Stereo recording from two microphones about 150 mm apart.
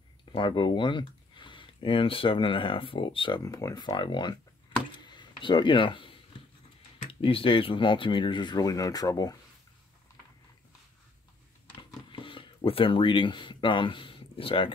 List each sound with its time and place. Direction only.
0.2 s speech: 35° left (ahead or behind)
4.9 s a sound: 30° left (ahead or behind)
7.1 s speech: 40° left (ahead or behind)
12.1 s speech: 35° left (ahead or behind)